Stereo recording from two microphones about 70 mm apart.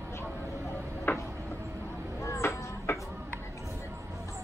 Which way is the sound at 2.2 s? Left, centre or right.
Left.